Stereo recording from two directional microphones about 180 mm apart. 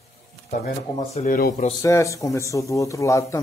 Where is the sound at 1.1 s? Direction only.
50° left (ahead or behind).